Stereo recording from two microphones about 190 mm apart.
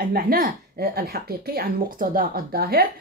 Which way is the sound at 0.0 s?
50° right (ahead or behind).